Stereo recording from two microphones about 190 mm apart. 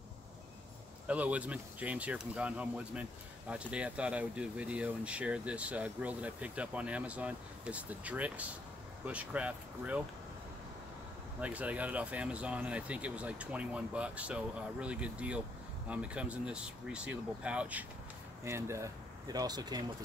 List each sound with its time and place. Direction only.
1.0 s speech: 5° right (ahead or behind)
11.4 s speech: 5° right (ahead or behind)